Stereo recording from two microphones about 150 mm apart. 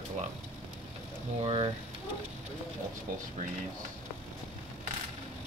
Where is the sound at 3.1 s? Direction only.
60° right (ahead or behind).